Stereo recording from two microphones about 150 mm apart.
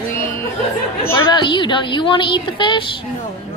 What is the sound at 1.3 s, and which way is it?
A woman's voice, 30° left (ahead or behind).